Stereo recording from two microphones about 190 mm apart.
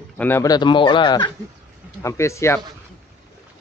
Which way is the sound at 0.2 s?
15° left (ahead or behind).